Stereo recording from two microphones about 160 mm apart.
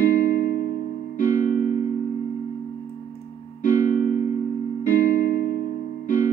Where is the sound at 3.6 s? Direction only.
55° left (ahead or behind).